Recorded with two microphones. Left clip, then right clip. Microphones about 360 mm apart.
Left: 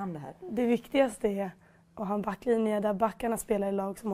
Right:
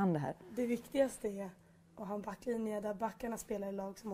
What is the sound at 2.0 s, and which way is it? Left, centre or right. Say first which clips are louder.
A woman's voice: left 10 dB; left.